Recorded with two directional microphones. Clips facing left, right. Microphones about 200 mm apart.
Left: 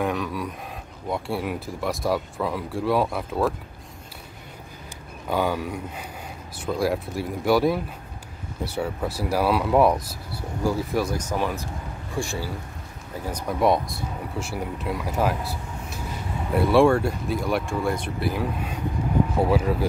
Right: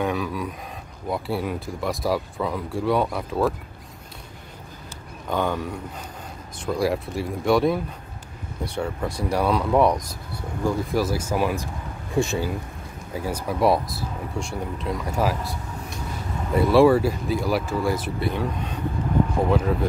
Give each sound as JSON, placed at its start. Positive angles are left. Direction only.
{"t": 0.0, "sound": "speech", "side_deg": 0}
{"t": 5.3, "sound": "speech", "side_deg": 5}
{"t": 12.2, "sound": "speech", "side_deg": -20}
{"t": 13.1, "sound": "speech", "side_deg": -10}